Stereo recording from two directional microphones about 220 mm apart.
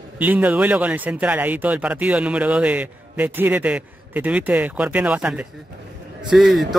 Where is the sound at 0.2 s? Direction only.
5° right (ahead or behind).